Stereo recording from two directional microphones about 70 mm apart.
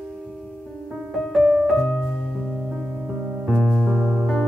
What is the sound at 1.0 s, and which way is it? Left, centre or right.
Music, centre.